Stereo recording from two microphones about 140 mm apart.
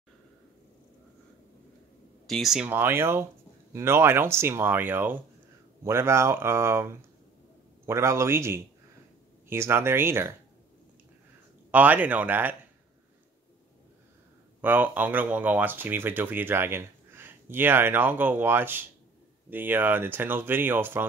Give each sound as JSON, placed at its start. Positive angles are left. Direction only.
{"t": 2.2, "sound": "speech", "side_deg": 0}
{"t": 2.7, "sound": "speech", "side_deg": -15}
{"t": 11.7, "sound": "speech", "side_deg": -10}
{"t": 14.6, "sound": "speech", "side_deg": -15}